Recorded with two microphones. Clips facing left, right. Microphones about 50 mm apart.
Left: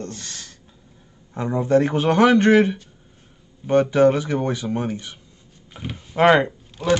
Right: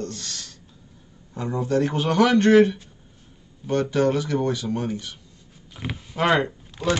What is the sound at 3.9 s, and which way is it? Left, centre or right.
Speech, left.